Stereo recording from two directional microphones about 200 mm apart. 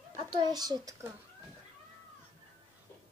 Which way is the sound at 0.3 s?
20° right (ahead or behind).